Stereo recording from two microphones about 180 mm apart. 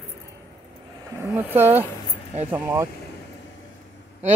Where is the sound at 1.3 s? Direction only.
10° right (ahead or behind).